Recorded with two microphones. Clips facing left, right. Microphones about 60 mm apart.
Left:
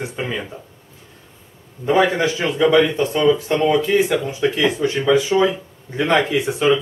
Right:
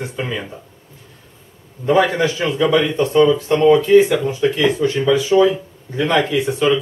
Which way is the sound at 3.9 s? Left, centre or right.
Centre.